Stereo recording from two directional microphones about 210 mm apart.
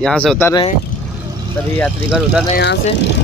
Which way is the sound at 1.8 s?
Centre (ahead or behind).